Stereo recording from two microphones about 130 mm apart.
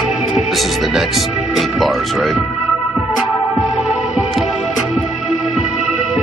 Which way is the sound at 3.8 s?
5° right (ahead or behind).